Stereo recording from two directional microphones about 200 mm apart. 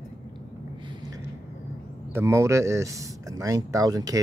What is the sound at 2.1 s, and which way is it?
Speech, 15° right (ahead or behind).